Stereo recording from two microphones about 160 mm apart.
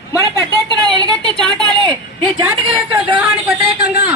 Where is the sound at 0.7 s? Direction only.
30° right (ahead or behind).